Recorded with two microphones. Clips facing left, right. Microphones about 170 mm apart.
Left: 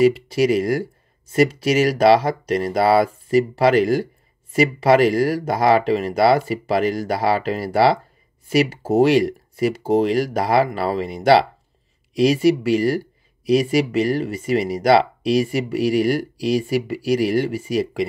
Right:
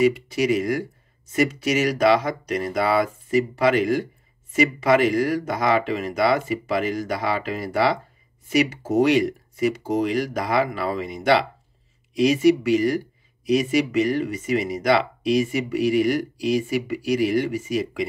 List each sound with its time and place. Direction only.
0.0 s speech: 30° left (ahead or behind)